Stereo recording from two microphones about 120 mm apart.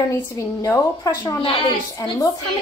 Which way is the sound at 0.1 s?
25° left (ahead or behind).